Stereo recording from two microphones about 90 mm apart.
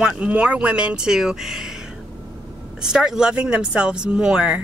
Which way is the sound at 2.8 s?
5° right (ahead or behind).